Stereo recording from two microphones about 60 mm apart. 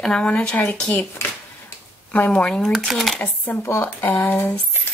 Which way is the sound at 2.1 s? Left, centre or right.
Left.